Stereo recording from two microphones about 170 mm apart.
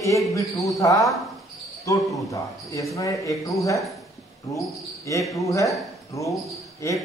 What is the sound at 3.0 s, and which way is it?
Speech, 20° left (ahead or behind).